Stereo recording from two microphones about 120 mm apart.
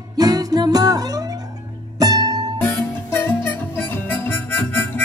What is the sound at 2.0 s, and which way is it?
Music, 30° right (ahead or behind).